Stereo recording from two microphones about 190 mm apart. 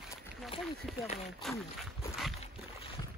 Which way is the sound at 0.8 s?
Centre (ahead or behind).